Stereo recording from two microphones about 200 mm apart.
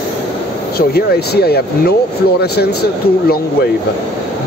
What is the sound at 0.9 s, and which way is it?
Speech, 50° left (ahead or behind).